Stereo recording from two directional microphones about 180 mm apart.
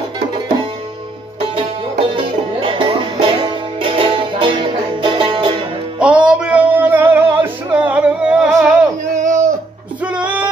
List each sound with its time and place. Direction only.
1.4 s music: 30° right (ahead or behind)
5.9 s music: 5° right (ahead or behind)
9.0 s a sound: 45° right (ahead or behind)
10.0 s bleat: 5° right (ahead or behind)